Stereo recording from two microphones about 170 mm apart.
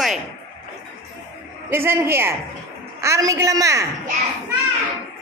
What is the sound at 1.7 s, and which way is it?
A man's voice, 15° right (ahead or behind).